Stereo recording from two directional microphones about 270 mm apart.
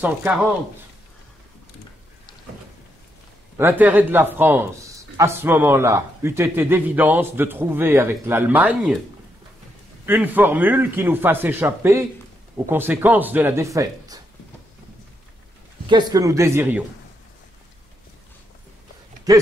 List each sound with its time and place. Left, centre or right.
3.5 s speech: centre
10.0 s speech: centre
15.9 s speech: centre
19.3 s speech: centre